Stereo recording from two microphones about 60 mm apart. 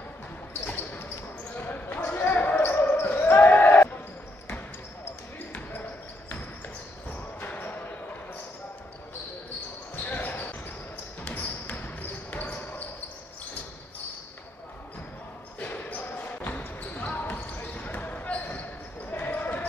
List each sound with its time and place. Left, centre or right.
1.6 s basketball bounce: left
5.0 s basketball bounce: left
9.9 s basketball bounce: left
15.6 s basketball bounce: left